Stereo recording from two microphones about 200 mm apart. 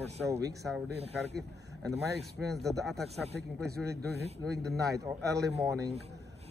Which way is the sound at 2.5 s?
Centre (ahead or behind).